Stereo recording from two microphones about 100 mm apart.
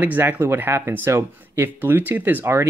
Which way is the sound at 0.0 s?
20° right (ahead or behind).